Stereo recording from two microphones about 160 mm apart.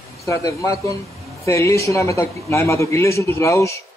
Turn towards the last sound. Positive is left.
turn(degrees=20)  # may be behind; listen again after turning